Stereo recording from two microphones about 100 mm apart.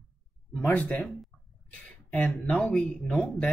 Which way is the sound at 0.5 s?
15° left (ahead or behind).